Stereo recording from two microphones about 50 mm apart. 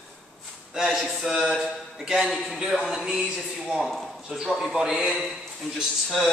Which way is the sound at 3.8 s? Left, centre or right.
Centre.